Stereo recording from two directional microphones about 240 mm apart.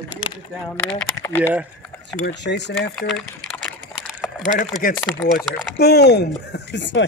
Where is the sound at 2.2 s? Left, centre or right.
Left.